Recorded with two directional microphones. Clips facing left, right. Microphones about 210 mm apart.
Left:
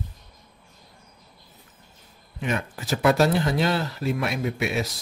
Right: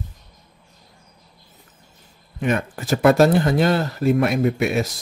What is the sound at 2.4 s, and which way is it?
Speech, 55° right (ahead or behind).